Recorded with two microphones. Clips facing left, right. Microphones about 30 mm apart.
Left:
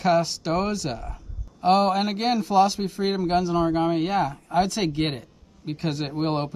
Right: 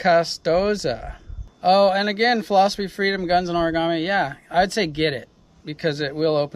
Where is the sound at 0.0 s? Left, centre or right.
Right.